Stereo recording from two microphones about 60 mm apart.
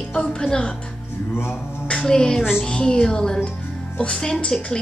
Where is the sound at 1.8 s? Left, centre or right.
Centre.